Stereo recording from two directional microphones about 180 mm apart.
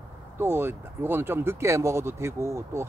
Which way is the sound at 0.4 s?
10° right (ahead or behind).